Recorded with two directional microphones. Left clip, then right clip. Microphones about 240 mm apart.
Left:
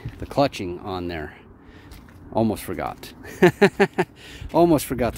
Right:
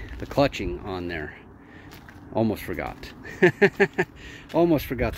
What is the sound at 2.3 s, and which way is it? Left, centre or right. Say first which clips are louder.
Speech: left 2 dB; centre.